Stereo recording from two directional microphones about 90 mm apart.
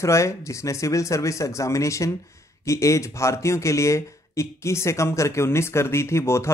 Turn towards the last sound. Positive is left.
turn(degrees=30)  # may be behind; listen again after turning